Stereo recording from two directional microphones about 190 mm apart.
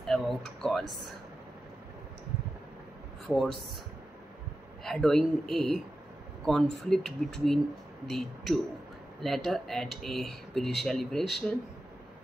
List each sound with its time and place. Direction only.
0.0 s speech: centre (ahead or behind)
4.8 s speech: centre (ahead or behind)